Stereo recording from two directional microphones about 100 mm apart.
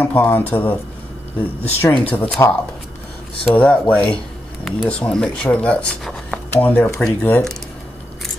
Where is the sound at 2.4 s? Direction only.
35° left (ahead or behind).